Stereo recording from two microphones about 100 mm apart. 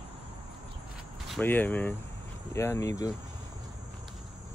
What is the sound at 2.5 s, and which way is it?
Speech, 25° left (ahead or behind).